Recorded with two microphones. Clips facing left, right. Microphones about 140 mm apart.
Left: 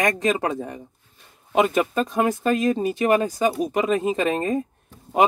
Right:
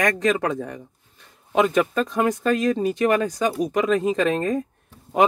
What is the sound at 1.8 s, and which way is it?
Speech, 20° left (ahead or behind).